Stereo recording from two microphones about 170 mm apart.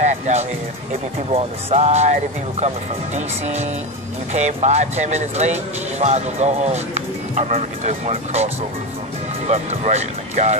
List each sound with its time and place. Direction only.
0.0 s speech: 40° right (ahead or behind)
3.2 s speech: 40° right (ahead or behind)
9.5 s speech: 40° right (ahead or behind)